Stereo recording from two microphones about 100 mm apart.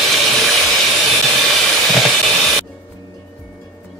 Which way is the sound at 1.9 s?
Centre (ahead or behind).